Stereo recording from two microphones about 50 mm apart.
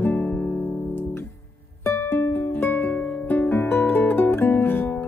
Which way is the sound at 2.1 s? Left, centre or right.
Left.